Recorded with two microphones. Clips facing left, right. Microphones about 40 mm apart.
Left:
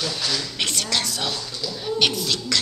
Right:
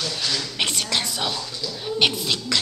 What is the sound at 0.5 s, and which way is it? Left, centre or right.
A woman's voice, centre.